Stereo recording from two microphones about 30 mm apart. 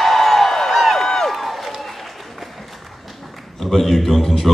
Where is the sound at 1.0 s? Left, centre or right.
Centre.